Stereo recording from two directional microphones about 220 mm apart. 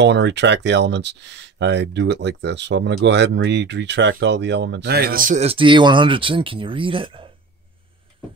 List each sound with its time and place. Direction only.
0.0 s speech: 50° right (ahead or behind); by 7.2 s 25° right (ahead or behind)